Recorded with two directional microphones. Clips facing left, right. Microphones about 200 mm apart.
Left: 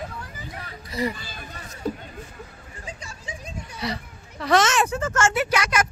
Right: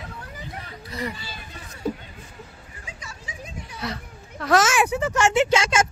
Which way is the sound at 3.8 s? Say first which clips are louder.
Left 2 dB; centre (ahead or behind).